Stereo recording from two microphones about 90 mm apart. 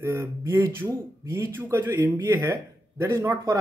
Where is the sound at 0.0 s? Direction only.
25° right (ahead or behind).